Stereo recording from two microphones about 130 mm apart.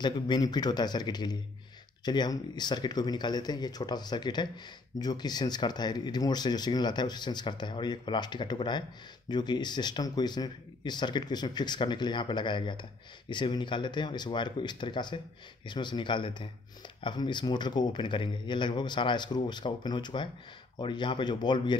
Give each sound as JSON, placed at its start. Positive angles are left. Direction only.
{"t": 0.0, "sound": "speech", "side_deg": 35}